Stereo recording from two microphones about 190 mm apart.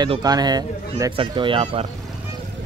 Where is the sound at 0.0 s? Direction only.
20° right (ahead or behind).